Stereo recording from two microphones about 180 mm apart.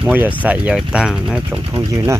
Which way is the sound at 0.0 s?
10° right (ahead or behind).